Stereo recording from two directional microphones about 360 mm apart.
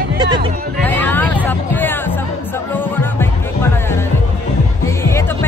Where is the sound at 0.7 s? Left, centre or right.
Centre.